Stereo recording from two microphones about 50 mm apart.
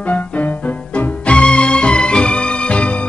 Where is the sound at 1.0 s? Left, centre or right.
Left.